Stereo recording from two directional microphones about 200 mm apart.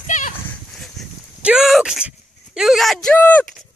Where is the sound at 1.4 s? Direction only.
5° right (ahead or behind).